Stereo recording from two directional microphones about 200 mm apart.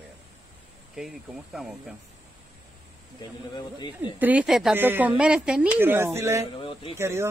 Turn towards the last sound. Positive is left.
turn(degrees=-15)  # may be behind; listen again after turning